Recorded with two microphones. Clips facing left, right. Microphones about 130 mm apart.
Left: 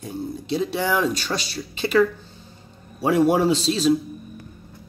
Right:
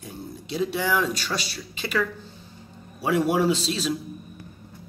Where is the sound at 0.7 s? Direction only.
25° left (ahead or behind).